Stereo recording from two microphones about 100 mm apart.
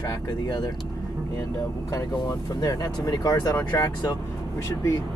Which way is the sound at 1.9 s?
35° left (ahead or behind).